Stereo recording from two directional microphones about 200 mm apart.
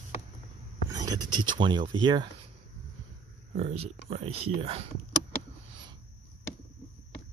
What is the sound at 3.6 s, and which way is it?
Speech, 30° right (ahead or behind).